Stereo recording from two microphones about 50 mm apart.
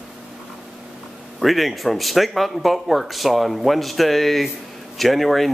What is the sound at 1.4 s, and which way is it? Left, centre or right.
Speech, centre.